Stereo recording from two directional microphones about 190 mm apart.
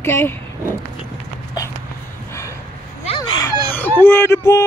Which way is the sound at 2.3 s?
15° left (ahead or behind).